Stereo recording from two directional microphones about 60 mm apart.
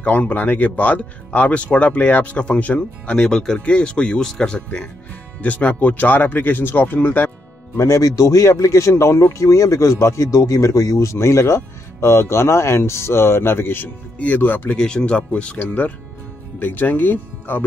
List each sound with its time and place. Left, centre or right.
0.0 s speech: left
3.3 s speech: centre
5.4 s speech: left
7.7 s speech: left
14.1 s speech: left
14.8 s speech: centre; by 17.6 s left